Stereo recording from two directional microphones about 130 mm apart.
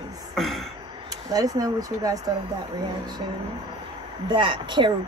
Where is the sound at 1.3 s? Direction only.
30° right (ahead or behind).